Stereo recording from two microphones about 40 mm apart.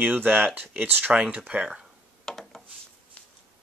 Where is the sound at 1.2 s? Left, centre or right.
Right.